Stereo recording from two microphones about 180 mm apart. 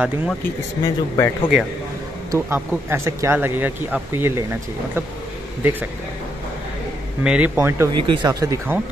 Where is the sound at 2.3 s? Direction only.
15° right (ahead or behind).